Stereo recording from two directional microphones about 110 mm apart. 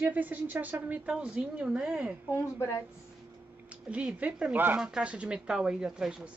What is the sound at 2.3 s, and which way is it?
Speech, 25° left (ahead or behind).